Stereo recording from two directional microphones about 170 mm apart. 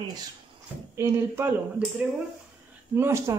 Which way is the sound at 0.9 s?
15° right (ahead or behind).